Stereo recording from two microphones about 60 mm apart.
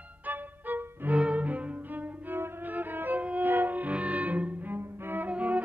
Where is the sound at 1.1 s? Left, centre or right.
Right.